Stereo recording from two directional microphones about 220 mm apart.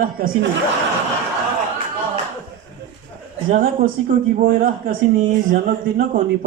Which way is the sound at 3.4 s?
35° right (ahead or behind).